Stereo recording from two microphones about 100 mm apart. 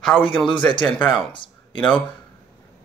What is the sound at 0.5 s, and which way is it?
Speech, 50° left (ahead or behind).